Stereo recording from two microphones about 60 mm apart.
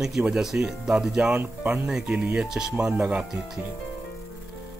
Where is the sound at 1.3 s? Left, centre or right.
Right.